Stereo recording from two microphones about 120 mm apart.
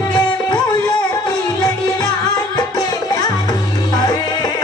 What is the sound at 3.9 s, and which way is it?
Music, 35° left (ahead or behind).